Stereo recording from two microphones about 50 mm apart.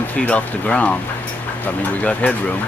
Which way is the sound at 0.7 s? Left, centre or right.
Left.